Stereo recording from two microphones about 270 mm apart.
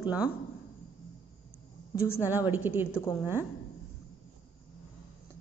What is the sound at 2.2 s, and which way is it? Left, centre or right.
Speech, centre.